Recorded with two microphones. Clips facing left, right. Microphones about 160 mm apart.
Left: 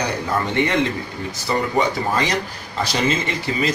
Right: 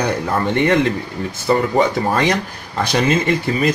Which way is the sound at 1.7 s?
55° right (ahead or behind).